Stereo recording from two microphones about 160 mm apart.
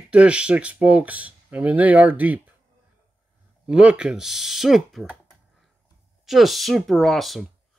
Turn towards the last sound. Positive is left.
turn(degrees=0)  # may be behind; listen again after turning